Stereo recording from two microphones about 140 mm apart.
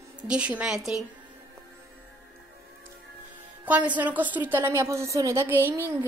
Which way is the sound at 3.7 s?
10° right (ahead or behind).